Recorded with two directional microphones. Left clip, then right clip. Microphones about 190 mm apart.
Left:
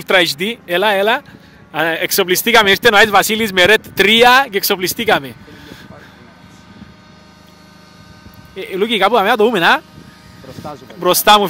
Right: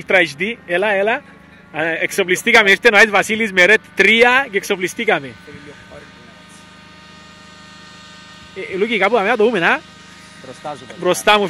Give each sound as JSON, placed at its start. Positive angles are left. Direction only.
{"t": 0.0, "sound": "speech", "side_deg": 15}
{"t": 8.5, "sound": "speech", "side_deg": 10}
{"t": 10.6, "sound": "speech", "side_deg": -50}
{"t": 11.0, "sound": "speech", "side_deg": 10}